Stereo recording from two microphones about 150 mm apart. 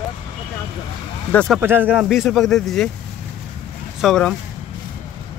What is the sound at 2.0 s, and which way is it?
Speech, centre (ahead or behind).